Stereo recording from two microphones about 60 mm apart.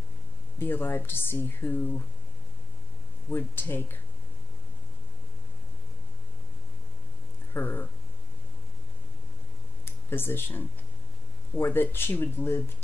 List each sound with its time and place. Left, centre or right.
0.6 s speech: left
3.3 s speech: left
7.5 s speech: left
9.8 s speech: left